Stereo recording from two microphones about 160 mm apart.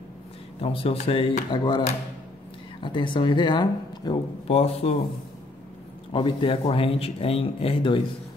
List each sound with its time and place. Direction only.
0.6 s speech: 35° left (ahead or behind)
4.5 s speech: 40° left (ahead or behind)
6.1 s speech: 30° left (ahead or behind)